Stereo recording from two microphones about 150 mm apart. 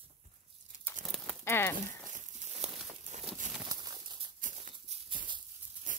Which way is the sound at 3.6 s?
30° right (ahead or behind).